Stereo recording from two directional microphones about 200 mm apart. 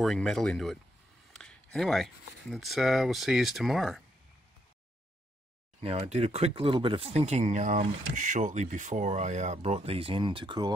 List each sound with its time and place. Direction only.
0.0 s speech: centre (ahead or behind)
1.3 s a sound: 5° left (ahead or behind)
2.5 s speech: centre (ahead or behind)
5.8 s speech: 30° right (ahead or behind)